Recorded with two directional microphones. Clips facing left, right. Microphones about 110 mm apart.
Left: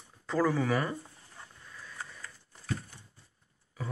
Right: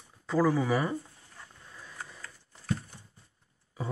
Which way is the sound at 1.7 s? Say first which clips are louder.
Even; 20° right (ahead or behind).